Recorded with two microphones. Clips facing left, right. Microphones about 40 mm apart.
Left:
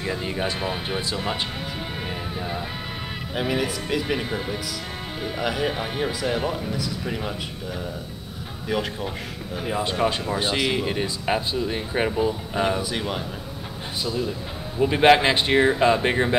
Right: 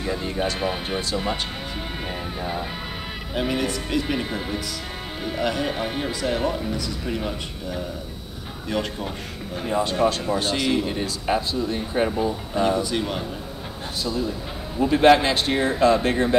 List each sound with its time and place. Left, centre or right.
0.0 s speech: centre
0.6 s speech: centre
3.3 s speech: centre
8.6 s speech: centre
14.8 s speech: left